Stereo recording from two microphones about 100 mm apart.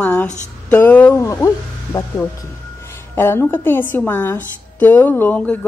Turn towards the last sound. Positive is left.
turn(degrees=15)  # may be behind; listen again after turning